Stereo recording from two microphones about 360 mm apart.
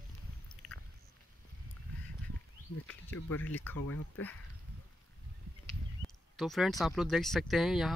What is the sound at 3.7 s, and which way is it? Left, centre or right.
Speech, left.